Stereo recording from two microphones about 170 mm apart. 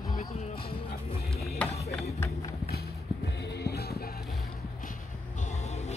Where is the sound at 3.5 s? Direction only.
70° left (ahead or behind).